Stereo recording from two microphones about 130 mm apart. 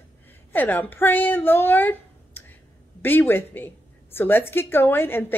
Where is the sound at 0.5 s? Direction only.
15° left (ahead or behind).